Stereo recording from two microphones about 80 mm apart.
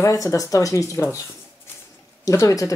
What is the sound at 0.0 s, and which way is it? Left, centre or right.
Speech, left.